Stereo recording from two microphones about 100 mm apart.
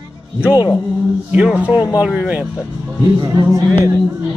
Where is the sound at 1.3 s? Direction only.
15° right (ahead or behind).